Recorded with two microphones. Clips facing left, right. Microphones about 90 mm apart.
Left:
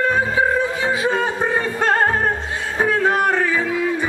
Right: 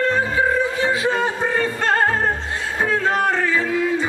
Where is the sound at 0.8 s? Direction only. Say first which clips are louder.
Even; 15° left (ahead or behind).